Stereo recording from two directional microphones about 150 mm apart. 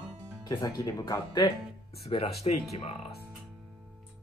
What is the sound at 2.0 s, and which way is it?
Speech, 40° left (ahead or behind).